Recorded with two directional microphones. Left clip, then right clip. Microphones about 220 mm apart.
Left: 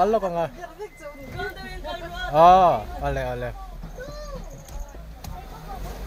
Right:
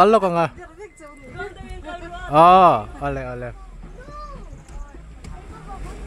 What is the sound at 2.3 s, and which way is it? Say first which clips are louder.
A man's voice: right 3 dB; 30° right (ahead or behind).